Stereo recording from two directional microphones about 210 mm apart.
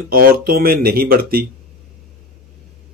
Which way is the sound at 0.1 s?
45° right (ahead or behind).